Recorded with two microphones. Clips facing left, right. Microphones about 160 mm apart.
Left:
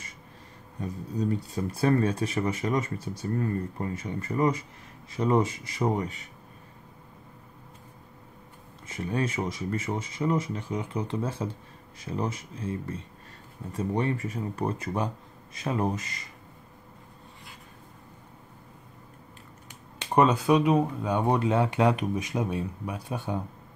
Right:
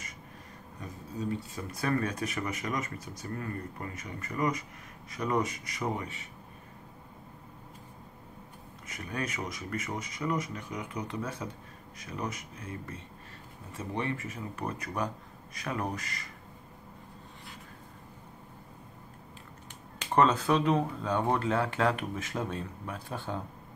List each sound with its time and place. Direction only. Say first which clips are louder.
1.3 s speech: left 6 dB; 30° left (ahead or behind)
8.8 s speech: left 7 dB; 30° left (ahead or behind)
20.2 s speech: left 4 dB; 15° left (ahead or behind)